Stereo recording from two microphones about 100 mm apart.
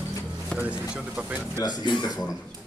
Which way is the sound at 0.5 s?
10° right (ahead or behind).